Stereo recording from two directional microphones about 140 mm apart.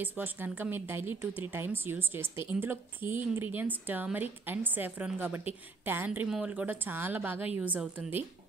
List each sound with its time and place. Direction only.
0.0 s a woman's voice: 10° right (ahead or behind)